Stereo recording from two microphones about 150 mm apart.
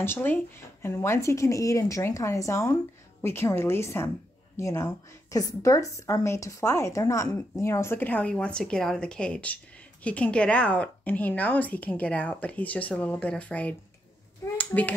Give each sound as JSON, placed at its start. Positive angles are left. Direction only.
{"t": 0.0, "sound": "a child's voice", "side_deg": 15}